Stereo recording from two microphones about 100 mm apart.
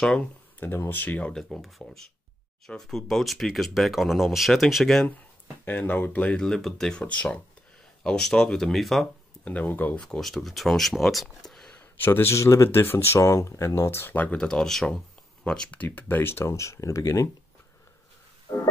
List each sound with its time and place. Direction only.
0.0 s speech: 10° left (ahead or behind)
0.7 s speech: 20° left (ahead or behind)
1.5 s speech: centre (ahead or behind)
5.7 s speech: 15° left (ahead or behind)
9.4 s speech: 15° left (ahead or behind)
10.0 s speech: 5° left (ahead or behind)
11.8 s speech: 25° left (ahead or behind)
18.5 s music: 40° left (ahead or behind)